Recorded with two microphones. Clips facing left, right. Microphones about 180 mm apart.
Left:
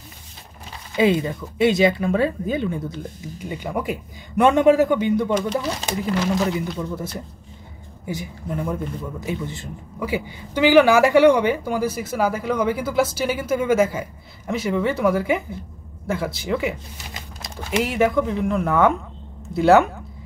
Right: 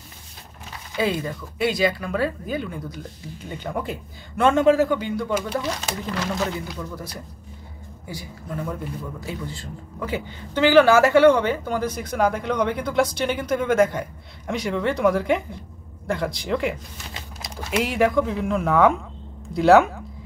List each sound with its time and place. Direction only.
0.9 s speech: 20° left (ahead or behind)
3.4 s a man's voice: 10° left (ahead or behind)
5.3 s speech: 5° right (ahead or behind)
5.9 s a man's voice: 10° left (ahead or behind)
6.7 s a woman's voice: 25° left (ahead or behind); by 20.0 s centre (ahead or behind)